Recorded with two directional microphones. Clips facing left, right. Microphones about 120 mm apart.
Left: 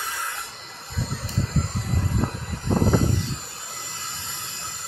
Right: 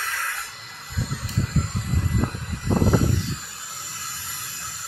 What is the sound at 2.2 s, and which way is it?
Vehicle, 30° left (ahead or behind).